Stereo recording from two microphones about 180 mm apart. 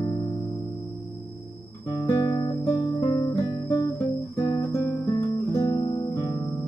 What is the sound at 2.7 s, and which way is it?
Music, 30° left (ahead or behind).